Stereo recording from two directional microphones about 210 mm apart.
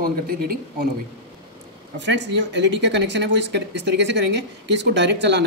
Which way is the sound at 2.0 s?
60° right (ahead or behind).